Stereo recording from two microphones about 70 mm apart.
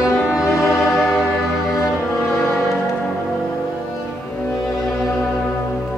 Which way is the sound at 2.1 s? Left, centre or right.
Centre.